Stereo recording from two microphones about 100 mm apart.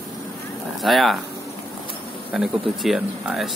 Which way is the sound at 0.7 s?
Centre (ahead or behind).